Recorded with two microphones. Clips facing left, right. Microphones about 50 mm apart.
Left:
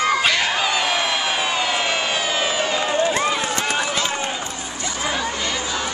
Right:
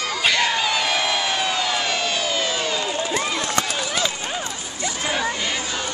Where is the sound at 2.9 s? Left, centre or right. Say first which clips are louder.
Left 4 dB; left.